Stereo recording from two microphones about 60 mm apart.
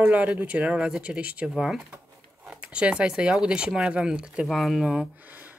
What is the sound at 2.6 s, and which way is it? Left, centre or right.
Speech, centre.